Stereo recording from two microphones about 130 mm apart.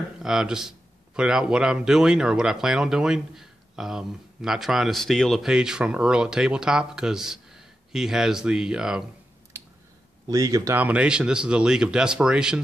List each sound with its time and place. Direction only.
0.2 s a man's voice: 5° right (ahead or behind)
9.5 s a sound: 20° right (ahead or behind)
10.2 s speech: 25° right (ahead or behind)
10.8 s speech: 10° right (ahead or behind)